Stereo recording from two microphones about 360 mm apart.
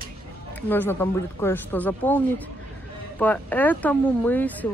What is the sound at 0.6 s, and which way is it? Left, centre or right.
Speech, centre.